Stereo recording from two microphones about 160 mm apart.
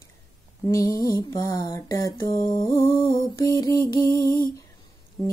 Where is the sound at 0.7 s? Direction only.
20° left (ahead or behind).